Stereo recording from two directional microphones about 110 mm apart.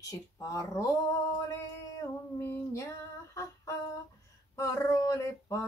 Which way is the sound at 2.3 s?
25° left (ahead or behind).